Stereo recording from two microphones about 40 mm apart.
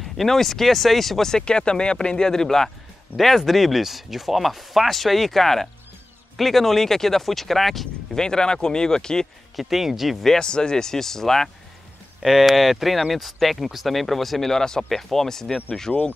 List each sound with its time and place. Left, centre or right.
0.0 s speech: centre
1.4 s speech: left
3.2 s speech: centre
8.2 s speech: centre
9.6 s speech: centre
10.4 s speech: centre
12.2 s speech: centre